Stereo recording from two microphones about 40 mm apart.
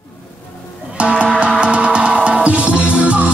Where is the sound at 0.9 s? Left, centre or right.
Right.